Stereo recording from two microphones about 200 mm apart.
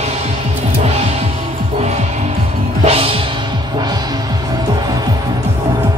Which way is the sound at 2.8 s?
30° right (ahead or behind).